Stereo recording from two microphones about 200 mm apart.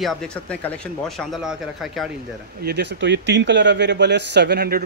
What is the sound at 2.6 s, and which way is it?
Speech, 55° right (ahead or behind).